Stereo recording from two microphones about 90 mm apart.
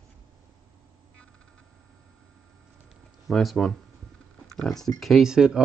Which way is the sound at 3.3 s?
Centre (ahead or behind).